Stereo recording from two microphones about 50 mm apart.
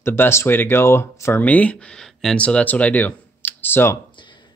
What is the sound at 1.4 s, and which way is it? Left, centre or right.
Speech, left.